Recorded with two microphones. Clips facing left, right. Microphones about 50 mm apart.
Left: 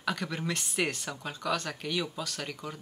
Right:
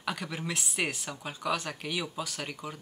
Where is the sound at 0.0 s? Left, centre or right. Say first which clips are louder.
Left 2 dB; centre.